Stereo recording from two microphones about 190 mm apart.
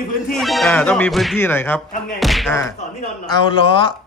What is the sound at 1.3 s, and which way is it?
Speech, 10° left (ahead or behind).